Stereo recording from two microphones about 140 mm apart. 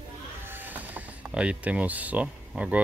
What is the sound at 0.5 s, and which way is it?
Speech, 15° right (ahead or behind).